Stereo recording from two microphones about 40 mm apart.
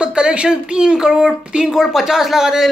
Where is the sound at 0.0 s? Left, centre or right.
Right.